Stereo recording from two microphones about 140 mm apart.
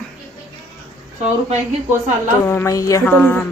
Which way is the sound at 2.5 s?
20° left (ahead or behind).